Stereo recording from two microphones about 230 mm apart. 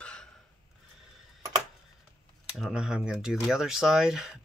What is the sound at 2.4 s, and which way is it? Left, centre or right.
Speech, centre.